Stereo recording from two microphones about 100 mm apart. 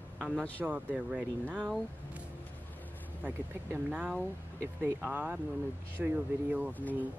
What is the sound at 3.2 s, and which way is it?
Speech, 15° right (ahead or behind).